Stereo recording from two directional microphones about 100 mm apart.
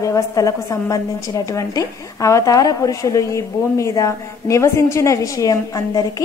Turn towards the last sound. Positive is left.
turn(degrees=35)  # may be behind; listen again after turning